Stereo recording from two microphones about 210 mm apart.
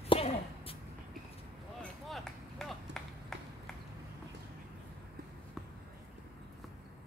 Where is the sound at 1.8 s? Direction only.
Centre (ahead or behind).